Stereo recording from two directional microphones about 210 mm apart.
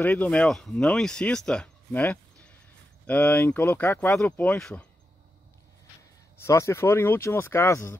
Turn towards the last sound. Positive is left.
turn(degrees=10)  # may be behind; listen again after turning